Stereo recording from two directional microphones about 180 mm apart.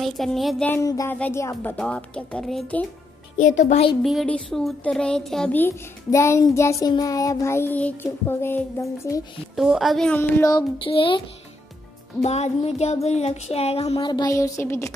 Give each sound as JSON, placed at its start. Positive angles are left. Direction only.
{"t": 0.0, "sound": "speech", "side_deg": 0}
{"t": 0.7, "sound": "speech", "side_deg": 15}
{"t": 3.5, "sound": "a sound", "side_deg": 40}
{"t": 4.0, "sound": "speech", "side_deg": 0}
{"t": 9.6, "sound": "speech", "side_deg": 0}
{"t": 10.5, "sound": "child singing", "side_deg": 30}
{"t": 12.2, "sound": "a sound", "side_deg": 35}